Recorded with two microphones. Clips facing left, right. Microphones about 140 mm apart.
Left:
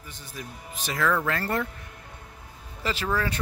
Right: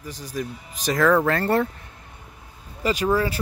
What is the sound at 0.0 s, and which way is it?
Speech, 40° right (ahead or behind).